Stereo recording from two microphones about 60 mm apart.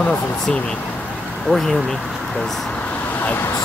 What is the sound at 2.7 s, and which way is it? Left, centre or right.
Vehicle, left.